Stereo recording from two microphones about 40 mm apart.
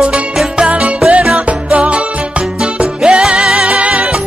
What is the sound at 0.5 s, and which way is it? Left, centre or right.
Music, right.